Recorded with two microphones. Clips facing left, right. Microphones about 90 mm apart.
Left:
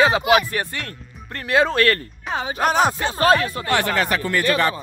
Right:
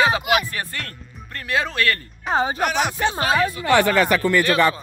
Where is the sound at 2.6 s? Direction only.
40° left (ahead or behind).